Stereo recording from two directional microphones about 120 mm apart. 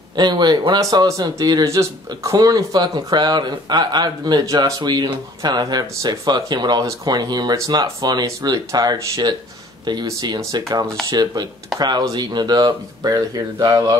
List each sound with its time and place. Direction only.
0.1 s speech: 40° right (ahead or behind)